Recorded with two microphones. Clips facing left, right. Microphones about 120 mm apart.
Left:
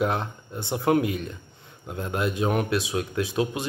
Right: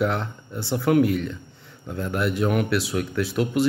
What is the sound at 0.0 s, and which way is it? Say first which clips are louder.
Speech: right 1 dB; 20° left (ahead or behind).